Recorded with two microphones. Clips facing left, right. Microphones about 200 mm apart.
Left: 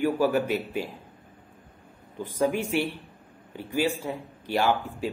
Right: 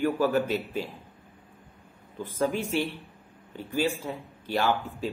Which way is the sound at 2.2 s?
15° left (ahead or behind).